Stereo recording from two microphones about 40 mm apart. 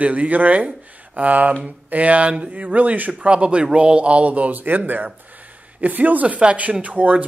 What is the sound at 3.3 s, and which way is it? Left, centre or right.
Speech, right.